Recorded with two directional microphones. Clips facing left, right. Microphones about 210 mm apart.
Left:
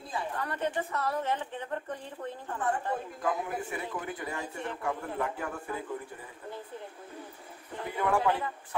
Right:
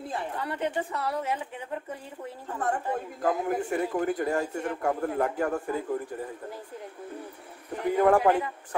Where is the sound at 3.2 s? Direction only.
45° right (ahead or behind).